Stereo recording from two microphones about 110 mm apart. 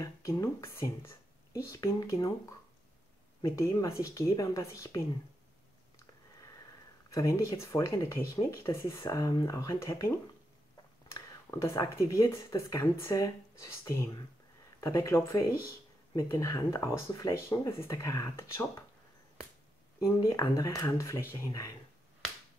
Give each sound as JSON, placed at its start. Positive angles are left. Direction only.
{"t": 0.0, "sound": "speech", "side_deg": 30}
{"t": 3.4, "sound": "speech", "side_deg": 30}
{"t": 7.1, "sound": "speech", "side_deg": 30}
{"t": 20.2, "sound": "speech", "side_deg": 30}